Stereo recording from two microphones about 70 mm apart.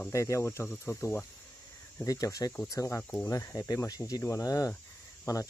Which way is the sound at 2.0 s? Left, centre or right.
Left.